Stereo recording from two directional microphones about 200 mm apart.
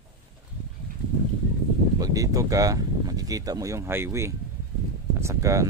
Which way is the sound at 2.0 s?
15° right (ahead or behind).